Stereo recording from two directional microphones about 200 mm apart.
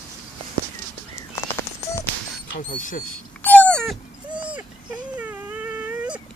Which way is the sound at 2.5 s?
40° left (ahead or behind).